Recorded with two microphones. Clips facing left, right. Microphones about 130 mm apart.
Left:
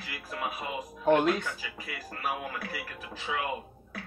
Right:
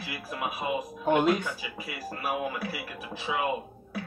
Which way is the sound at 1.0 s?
10° right (ahead or behind).